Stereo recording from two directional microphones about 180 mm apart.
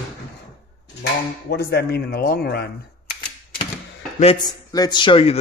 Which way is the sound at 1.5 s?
65° left (ahead or behind).